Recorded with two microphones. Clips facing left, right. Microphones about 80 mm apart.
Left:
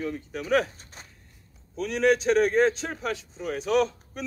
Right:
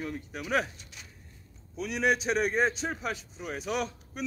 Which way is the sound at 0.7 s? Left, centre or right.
Left.